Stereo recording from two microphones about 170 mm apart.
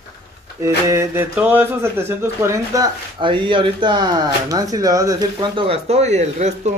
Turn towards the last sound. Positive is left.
turn(degrees=-40)  # may be behind; listen again after turning